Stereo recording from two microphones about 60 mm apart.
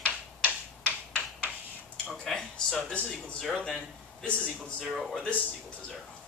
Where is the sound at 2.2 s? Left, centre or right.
Centre.